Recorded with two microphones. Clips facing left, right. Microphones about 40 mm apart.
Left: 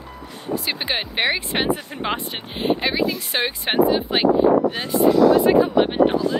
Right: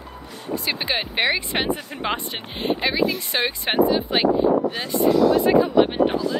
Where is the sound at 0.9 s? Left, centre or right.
Centre.